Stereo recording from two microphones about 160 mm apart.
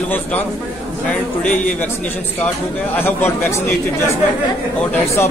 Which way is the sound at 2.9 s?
15° left (ahead or behind).